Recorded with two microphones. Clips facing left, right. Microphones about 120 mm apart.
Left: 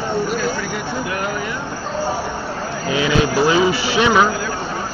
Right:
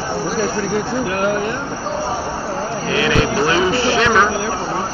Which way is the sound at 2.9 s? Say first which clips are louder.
Even; 15° left (ahead or behind).